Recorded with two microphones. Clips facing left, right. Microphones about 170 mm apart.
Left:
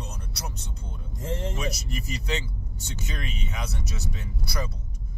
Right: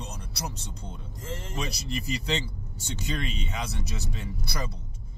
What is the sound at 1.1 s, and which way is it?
Speech, 20° left (ahead or behind).